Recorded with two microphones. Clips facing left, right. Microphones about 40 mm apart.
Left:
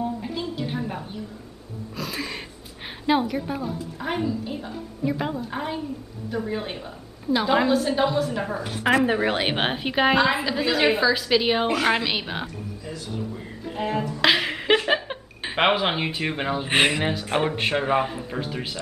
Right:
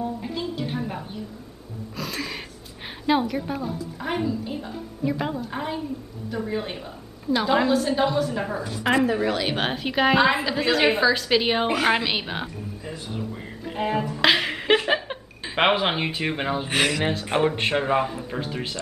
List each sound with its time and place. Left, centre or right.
0.2 s a sound: centre
2.0 s a woman's voice: centre
9.0 s a woman's voice: left
9.6 s a woman's voice: centre
10.1 s a woman's voice: centre
12.8 s speech: right
13.3 s music: centre
14.3 s a sound: centre
15.5 s a woman's voice: centre
16.6 s speech: left
17.0 s a woman's voice: centre
17.8 s a woman's voice: centre
18.3 s a woman's voice: centre